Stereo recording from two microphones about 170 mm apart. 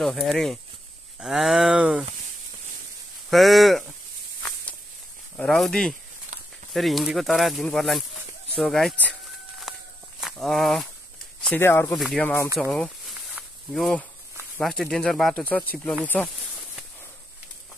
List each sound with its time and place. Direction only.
0.0 s speech: centre (ahead or behind)
3.3 s speech: centre (ahead or behind)
5.4 s speech: 5° left (ahead or behind)
6.3 s a sound: 45° right (ahead or behind)
6.7 s speech: centre (ahead or behind)
9.7 s walk: centre (ahead or behind)
10.2 s speech: centre (ahead or behind)
11.4 s speech: 10° left (ahead or behind)
12.7 s snake: centre (ahead or behind)
14.6 s speech: centre (ahead or behind)